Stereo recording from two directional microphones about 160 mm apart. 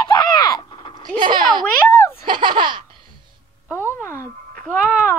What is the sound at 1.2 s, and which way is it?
Baby laughter, 30° right (ahead or behind).